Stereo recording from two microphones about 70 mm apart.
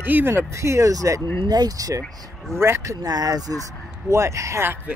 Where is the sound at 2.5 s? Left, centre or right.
Right.